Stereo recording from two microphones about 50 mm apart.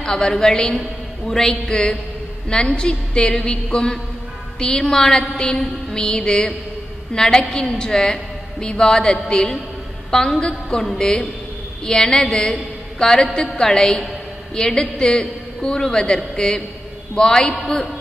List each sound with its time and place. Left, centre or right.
0.0 s a woman's voice: centre
1.5 s a woman's voice: centre